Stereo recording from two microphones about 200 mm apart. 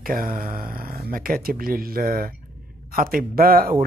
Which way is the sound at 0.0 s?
45° right (ahead or behind).